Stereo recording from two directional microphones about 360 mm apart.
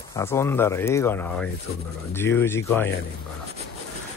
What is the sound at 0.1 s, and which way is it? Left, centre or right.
Speech, centre.